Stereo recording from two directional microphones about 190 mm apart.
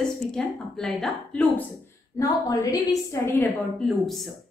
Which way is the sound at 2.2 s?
20° left (ahead or behind).